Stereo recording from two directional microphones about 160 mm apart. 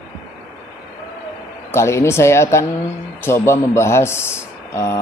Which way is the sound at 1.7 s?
15° left (ahead or behind).